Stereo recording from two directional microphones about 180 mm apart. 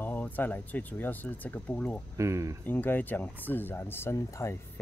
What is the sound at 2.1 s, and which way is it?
Speech, 15° right (ahead or behind).